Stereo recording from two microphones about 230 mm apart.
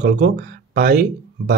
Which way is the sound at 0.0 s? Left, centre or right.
Right.